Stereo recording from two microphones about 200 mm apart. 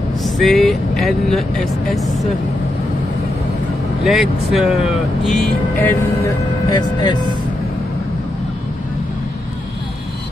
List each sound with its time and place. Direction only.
0.2 s speech: centre (ahead or behind)
4.0 s speech: centre (ahead or behind)
6.7 s speech: 20° left (ahead or behind)